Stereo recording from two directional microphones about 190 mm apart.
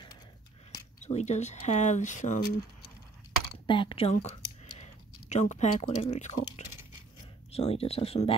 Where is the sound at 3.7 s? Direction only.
25° left (ahead or behind).